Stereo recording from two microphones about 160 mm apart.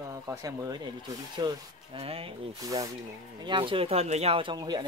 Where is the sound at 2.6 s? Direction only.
20° right (ahead or behind).